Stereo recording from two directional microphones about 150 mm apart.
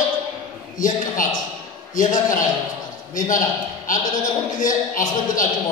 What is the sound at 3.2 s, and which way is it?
A man's voice, 60° left (ahead or behind).